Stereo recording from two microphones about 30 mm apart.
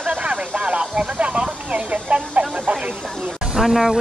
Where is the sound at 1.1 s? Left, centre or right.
Right.